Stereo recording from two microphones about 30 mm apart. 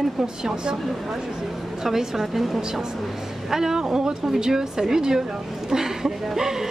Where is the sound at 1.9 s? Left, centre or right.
Centre.